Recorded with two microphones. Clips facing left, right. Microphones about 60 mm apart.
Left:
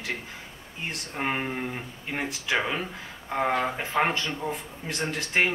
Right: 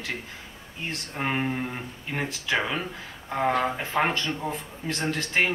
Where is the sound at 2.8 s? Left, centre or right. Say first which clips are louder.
Even; centre.